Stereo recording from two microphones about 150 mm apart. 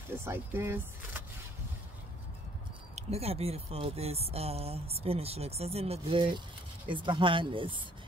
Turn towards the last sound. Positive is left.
turn(degrees=-35)  # may be behind; listen again after turning